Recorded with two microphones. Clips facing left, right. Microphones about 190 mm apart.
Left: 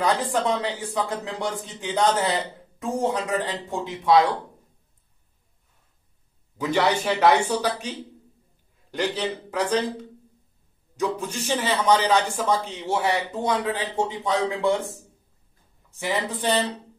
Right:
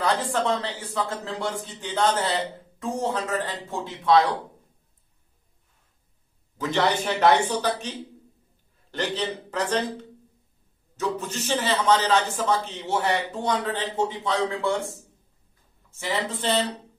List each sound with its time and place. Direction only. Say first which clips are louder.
0.0 s a man's voice: left 1 dB; 15° left (ahead or behind)
6.6 s a man's voice: left 2 dB; 10° left (ahead or behind)
8.9 s a man's voice: left 2 dB; 10° left (ahead or behind)
15.9 s a man's voice: left 1 dB; 15° left (ahead or behind)